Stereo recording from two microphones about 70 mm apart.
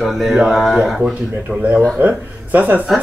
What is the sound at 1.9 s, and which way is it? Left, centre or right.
Speech, right.